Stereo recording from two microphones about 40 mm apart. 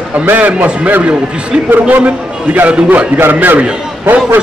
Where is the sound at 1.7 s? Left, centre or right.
Right.